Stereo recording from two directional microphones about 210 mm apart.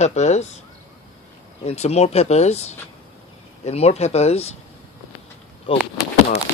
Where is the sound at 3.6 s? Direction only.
30° left (ahead or behind).